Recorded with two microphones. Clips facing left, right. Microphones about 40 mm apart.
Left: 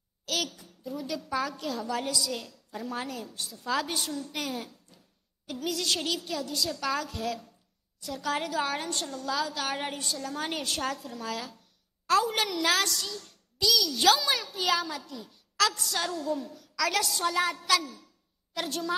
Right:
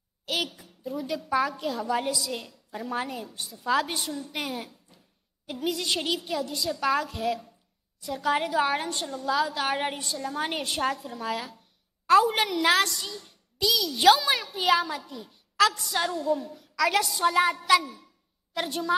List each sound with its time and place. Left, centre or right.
0.2 s a woman's voice: centre